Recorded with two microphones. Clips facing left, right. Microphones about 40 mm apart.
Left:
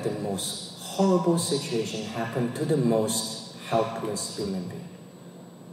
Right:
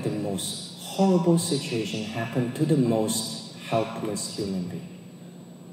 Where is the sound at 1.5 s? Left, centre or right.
Centre.